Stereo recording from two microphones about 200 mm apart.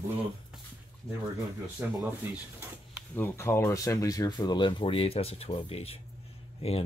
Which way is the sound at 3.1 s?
15° left (ahead or behind).